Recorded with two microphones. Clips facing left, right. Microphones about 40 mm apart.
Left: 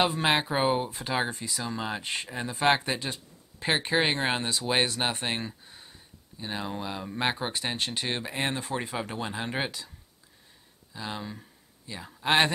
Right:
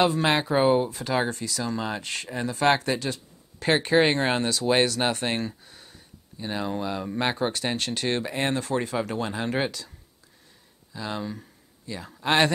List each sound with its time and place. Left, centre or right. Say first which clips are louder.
0.0 s speech: right 3 dB; centre
5.7 s a sound: right 1 dB; left
6.3 s speech: right 5 dB; centre
10.9 s speech: right 4 dB; centre